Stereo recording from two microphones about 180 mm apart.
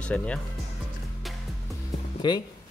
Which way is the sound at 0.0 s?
5° left (ahead or behind).